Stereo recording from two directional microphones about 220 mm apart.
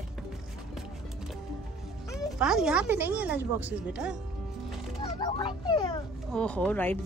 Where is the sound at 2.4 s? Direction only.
5° right (ahead or behind).